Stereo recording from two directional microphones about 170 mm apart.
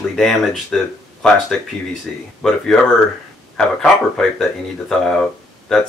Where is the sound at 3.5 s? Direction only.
5° left (ahead or behind).